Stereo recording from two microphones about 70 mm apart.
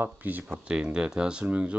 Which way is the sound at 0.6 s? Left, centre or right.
Centre.